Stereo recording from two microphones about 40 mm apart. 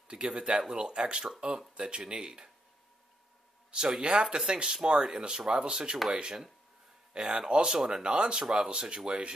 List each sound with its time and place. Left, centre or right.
0.1 s speech: right
3.7 s speech: centre